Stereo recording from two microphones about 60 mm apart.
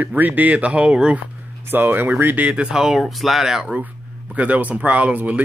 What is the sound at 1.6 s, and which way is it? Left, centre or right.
Speech, right.